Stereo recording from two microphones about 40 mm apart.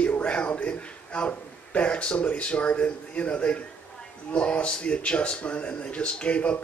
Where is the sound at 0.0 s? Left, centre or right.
Left.